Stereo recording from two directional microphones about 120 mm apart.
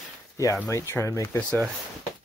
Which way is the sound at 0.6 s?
25° left (ahead or behind).